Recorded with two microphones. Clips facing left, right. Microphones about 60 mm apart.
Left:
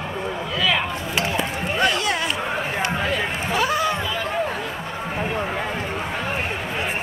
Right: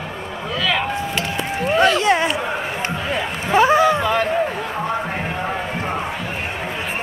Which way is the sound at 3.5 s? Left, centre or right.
Right.